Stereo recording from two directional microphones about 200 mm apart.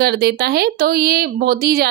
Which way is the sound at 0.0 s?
50° right (ahead or behind).